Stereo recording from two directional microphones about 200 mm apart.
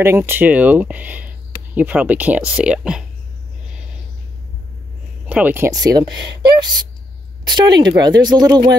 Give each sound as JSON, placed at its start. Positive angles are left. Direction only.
{"t": 0.0, "sound": "speech", "side_deg": -10}
{"t": 5.3, "sound": "speech", "side_deg": -10}